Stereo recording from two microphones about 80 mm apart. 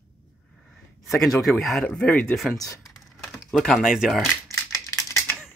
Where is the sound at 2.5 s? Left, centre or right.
Left.